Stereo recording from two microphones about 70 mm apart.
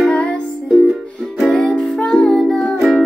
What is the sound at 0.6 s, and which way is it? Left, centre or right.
Music, centre.